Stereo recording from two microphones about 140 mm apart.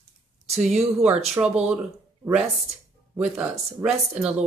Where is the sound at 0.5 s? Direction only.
5° right (ahead or behind).